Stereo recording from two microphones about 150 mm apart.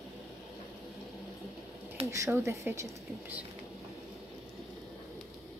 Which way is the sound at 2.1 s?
20° right (ahead or behind).